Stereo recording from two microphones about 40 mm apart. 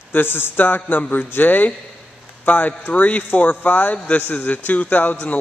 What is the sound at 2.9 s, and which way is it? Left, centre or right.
Speech, left.